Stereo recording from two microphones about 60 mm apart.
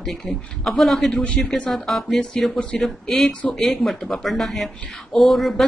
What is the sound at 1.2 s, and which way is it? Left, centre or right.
Speech, centre.